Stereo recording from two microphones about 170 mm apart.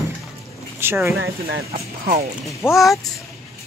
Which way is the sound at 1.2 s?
75° right (ahead or behind).